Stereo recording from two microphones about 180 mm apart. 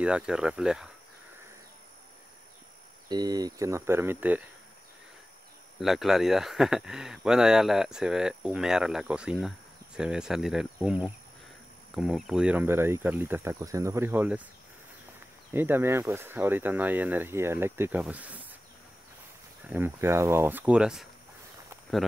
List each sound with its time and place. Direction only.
0.0 s speech: 5° right (ahead or behind)
3.1 s speech: 20° right (ahead or behind)
5.8 s speech: centre (ahead or behind)
15.5 s speech: 10° right (ahead or behind)
19.6 s speech: 10° right (ahead or behind)